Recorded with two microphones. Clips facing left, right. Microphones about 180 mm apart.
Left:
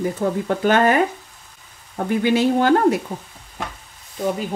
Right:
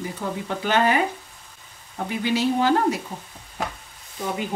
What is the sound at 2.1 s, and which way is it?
Speech, 55° left (ahead or behind).